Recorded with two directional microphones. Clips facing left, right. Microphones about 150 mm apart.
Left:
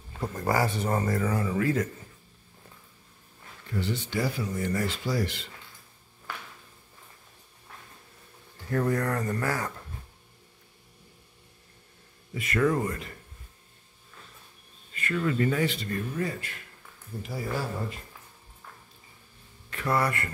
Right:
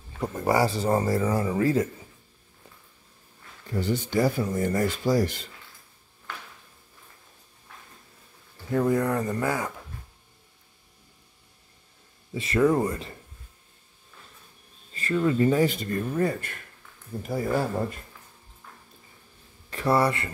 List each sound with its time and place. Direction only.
0.5 s speech: 30° right (ahead or behind)
3.7 s speech: 45° right (ahead or behind)
8.6 s speech: 15° right (ahead or behind)
12.4 s speech: 30° right (ahead or behind)
15.1 s speech: 25° right (ahead or behind)
15.6 s speech: 45° right (ahead or behind)
19.7 s speech: 30° right (ahead or behind)